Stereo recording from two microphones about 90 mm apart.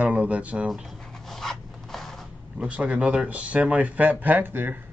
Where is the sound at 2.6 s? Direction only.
15° right (ahead or behind).